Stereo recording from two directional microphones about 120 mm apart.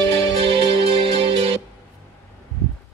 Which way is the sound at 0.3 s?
50° right (ahead or behind).